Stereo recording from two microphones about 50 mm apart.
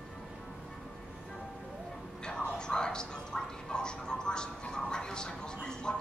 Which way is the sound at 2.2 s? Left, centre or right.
Centre.